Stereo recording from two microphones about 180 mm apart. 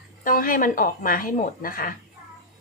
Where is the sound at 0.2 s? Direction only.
50° left (ahead or behind).